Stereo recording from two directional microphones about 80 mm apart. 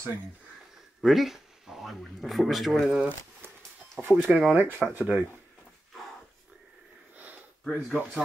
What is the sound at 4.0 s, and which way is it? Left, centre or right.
Speech, centre.